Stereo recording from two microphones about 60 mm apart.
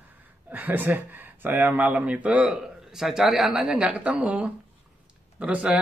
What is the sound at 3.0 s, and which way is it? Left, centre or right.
Speech, centre.